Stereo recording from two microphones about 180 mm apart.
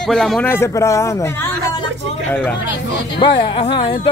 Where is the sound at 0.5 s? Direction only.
15° left (ahead or behind).